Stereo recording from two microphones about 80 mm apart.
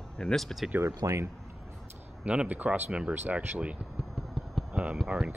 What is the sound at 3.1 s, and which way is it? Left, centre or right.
Speech, right.